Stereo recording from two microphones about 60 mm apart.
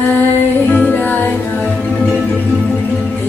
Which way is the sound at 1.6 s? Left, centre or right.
Centre.